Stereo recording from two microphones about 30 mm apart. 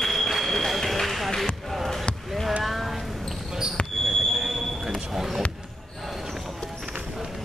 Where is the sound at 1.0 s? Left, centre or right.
Centre.